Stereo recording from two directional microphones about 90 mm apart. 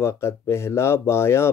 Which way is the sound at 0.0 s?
30° left (ahead or behind).